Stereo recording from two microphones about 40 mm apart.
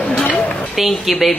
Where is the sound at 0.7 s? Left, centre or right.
Centre.